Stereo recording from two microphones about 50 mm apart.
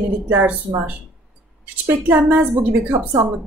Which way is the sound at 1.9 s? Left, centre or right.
Right.